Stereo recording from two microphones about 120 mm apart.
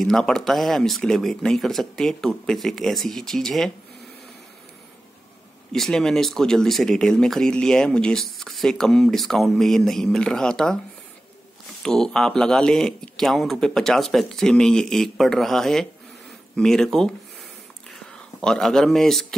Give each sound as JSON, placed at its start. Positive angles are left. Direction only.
{"t": 0.0, "sound": "speech", "side_deg": 5}
{"t": 5.7, "sound": "speech", "side_deg": 5}
{"t": 11.8, "sound": "speech", "side_deg": 5}
{"t": 16.5, "sound": "whispering", "side_deg": 5}